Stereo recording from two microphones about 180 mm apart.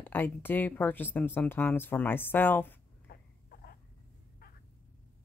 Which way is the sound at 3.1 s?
55° left (ahead or behind).